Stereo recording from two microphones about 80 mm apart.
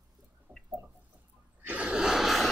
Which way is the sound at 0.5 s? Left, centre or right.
Right.